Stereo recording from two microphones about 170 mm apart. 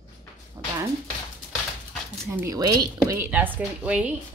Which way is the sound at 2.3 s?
20° right (ahead or behind).